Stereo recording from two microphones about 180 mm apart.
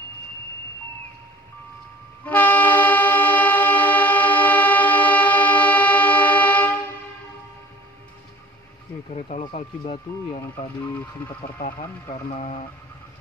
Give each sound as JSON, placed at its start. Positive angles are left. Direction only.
{"t": 2.2, "sound": "train", "side_deg": 10}
{"t": 9.1, "sound": "a sound", "side_deg": 35}
{"t": 11.6, "sound": "speech", "side_deg": 45}